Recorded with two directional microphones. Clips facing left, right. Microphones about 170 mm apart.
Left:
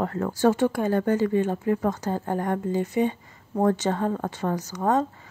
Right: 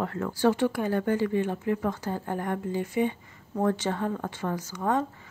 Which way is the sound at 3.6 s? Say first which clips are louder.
Left 4 dB; 45° left (ahead or behind).